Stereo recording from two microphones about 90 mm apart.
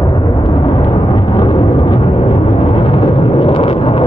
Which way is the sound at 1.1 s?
65° left (ahead or behind).